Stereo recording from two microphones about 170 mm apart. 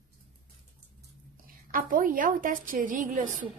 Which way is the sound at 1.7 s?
55° right (ahead or behind).